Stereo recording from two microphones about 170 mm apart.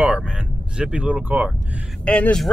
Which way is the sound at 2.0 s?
5° left (ahead or behind).